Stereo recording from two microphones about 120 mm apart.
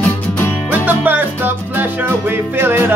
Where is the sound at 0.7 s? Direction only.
15° right (ahead or behind).